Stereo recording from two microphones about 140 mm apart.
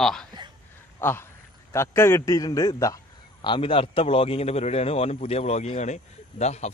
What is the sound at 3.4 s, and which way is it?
A man's voice, 40° left (ahead or behind).